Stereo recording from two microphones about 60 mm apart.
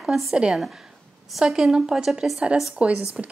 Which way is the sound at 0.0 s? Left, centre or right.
Centre.